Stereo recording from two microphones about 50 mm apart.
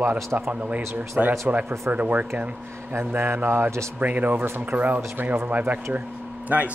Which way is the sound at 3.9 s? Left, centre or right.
Right.